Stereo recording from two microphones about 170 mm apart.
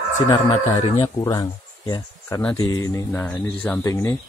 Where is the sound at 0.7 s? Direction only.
35° left (ahead or behind).